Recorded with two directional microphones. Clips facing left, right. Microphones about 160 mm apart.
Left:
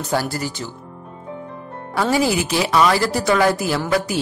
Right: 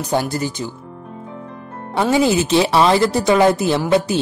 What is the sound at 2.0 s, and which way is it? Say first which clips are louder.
Speech: right 3 dB; 20° right (ahead or behind).